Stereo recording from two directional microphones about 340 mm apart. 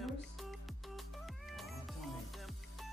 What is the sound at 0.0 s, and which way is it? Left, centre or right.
Music, centre.